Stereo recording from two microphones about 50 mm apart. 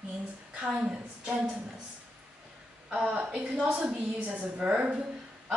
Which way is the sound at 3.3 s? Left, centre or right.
Right.